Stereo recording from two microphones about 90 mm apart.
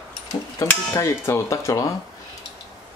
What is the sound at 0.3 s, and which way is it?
Speech, 35° left (ahead or behind).